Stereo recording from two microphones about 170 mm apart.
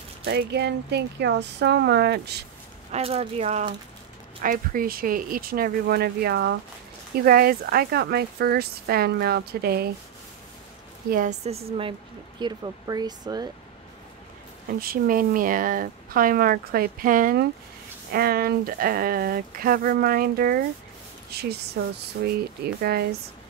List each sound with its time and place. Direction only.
0.2 s speech: 75° right (ahead or behind)
2.9 s speech: 35° right (ahead or behind)
4.4 s speech: 55° right (ahead or behind); by 6.5 s 75° right (ahead or behind)
7.2 s speech: 60° right (ahead or behind)
11.1 s speech: 55° right (ahead or behind)
11.4 s speech: 35° right (ahead or behind)
12.4 s speech: 25° right (ahead or behind)
14.8 s a woman's voice: 55° right (ahead or behind)